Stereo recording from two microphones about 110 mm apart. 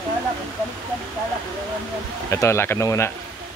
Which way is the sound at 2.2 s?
25° left (ahead or behind).